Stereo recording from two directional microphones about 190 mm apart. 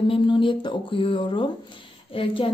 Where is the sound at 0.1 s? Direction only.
25° left (ahead or behind).